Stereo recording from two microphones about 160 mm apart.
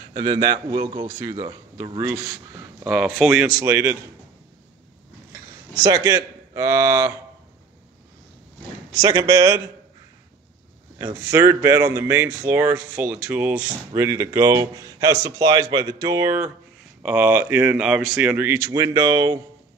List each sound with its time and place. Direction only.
0.1 s speech: 30° right (ahead or behind)
0.7 s speech: 50° right (ahead or behind)
1.2 s speech: 30° right (ahead or behind)
2.0 s speech: 15° right (ahead or behind)
2.8 s speech: 5° right (ahead or behind)
5.8 s speech: 20° right (ahead or behind)
8.9 s speech: 20° right (ahead or behind)
11.0 s speech: 20° right (ahead or behind)